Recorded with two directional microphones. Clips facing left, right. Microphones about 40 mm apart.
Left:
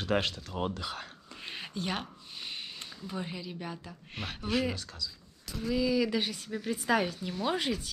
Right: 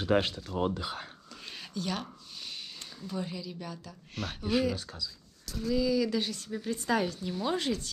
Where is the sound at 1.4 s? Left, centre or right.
Left.